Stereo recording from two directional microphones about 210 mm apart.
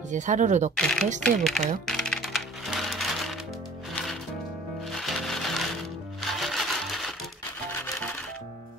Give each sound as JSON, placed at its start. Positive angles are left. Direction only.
{"t": 0.1, "sound": "speech", "side_deg": -35}
{"t": 0.7, "sound": "speech", "side_deg": 5}
{"t": 1.9, "sound": "music", "side_deg": 0}